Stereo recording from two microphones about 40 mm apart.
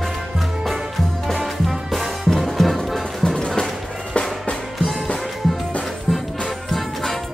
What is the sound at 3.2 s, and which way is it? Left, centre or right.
Music, left.